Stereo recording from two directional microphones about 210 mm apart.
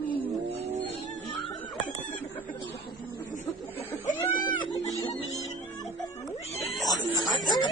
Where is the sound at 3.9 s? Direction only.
20° left (ahead or behind).